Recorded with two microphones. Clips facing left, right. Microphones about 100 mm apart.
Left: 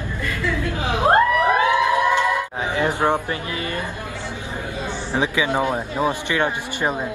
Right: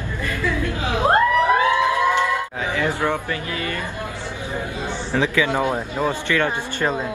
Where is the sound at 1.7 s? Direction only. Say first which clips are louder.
Left 1 dB; 15° left (ahead or behind).